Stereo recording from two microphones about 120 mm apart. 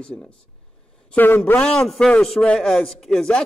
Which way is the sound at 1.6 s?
5° left (ahead or behind).